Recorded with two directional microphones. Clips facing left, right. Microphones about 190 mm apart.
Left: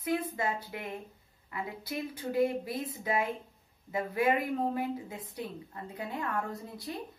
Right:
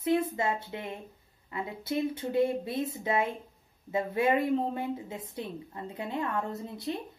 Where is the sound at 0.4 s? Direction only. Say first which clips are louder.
Right 3 dB; 25° right (ahead or behind).